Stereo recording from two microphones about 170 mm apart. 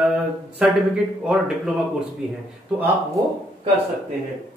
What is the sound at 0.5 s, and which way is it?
Speech, 5° right (ahead or behind).